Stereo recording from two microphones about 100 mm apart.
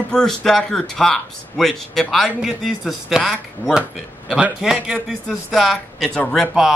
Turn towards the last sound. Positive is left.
turn(degrees=5)  # may be behind; listen again after turning